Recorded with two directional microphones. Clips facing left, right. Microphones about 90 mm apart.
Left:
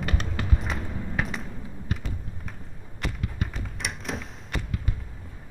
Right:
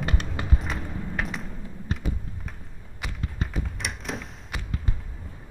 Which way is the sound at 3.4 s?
30° right (ahead or behind).